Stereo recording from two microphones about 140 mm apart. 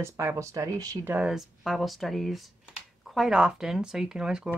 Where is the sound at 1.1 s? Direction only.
5° right (ahead or behind).